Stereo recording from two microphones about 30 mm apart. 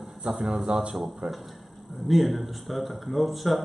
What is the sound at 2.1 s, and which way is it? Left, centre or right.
Speech, centre.